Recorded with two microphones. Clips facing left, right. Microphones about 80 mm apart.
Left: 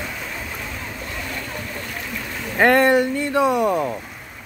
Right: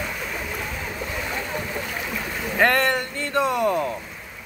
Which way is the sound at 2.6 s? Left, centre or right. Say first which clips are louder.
Left 5 dB; centre.